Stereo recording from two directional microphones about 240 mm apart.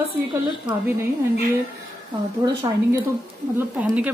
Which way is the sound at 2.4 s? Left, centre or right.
Centre.